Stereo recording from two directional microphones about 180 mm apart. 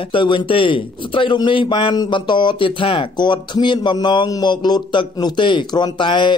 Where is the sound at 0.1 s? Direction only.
30° left (ahead or behind).